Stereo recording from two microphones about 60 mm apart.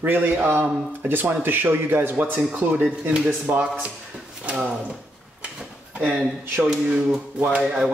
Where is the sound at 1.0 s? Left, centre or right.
Right.